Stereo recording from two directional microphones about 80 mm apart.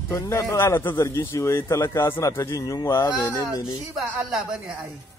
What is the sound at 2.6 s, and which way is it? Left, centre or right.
Speech, left.